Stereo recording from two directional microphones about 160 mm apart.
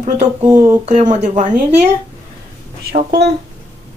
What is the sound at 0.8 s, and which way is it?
Speech, 50° right (ahead or behind).